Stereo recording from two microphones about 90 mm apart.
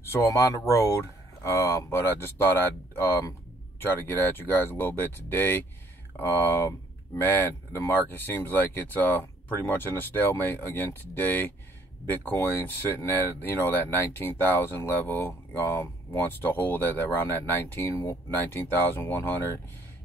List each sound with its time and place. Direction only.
0.0 s speech: 35° left (ahead or behind)